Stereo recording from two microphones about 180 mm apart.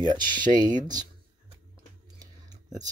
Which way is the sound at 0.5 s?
45° right (ahead or behind).